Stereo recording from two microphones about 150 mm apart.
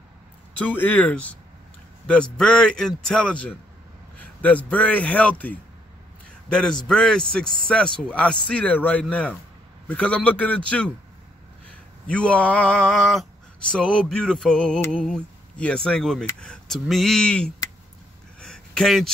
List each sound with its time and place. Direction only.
0.6 s speech: 10° left (ahead or behind)
12.1 s speech: 5° left (ahead or behind)
18.4 s a sound: 5° left (ahead or behind)